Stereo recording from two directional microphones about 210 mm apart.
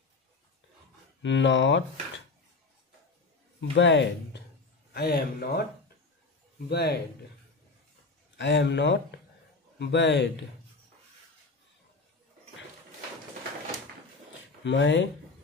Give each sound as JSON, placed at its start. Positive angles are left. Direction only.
{"t": 1.2, "sound": "speech", "side_deg": 60}
{"t": 3.7, "sound": "speech", "side_deg": 60}
{"t": 4.9, "sound": "speech", "side_deg": 50}
{"t": 6.7, "sound": "speech", "side_deg": 50}
{"t": 8.4, "sound": "speech", "side_deg": 60}
{"t": 14.6, "sound": "speech", "side_deg": 60}